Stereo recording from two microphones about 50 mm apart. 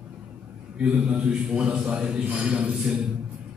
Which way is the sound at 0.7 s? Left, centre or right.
Right.